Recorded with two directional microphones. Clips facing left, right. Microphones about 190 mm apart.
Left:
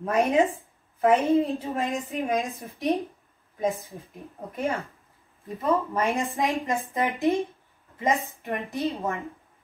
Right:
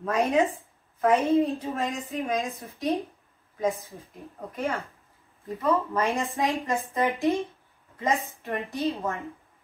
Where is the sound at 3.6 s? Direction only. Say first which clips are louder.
Even; 15° left (ahead or behind).